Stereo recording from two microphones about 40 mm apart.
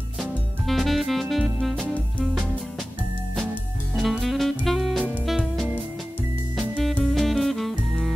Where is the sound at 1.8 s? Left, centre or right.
Left.